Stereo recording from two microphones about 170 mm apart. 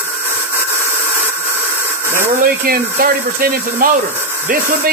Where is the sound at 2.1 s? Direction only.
55° right (ahead or behind).